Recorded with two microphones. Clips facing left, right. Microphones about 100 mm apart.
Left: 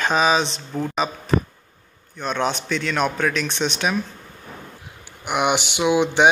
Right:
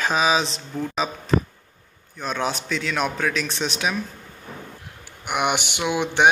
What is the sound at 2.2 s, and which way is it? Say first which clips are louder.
Speech: left 3 dB; 5° right (ahead or behind).